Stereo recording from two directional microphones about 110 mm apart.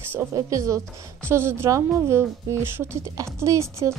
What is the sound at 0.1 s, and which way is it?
A woman's voice, 30° right (ahead or behind).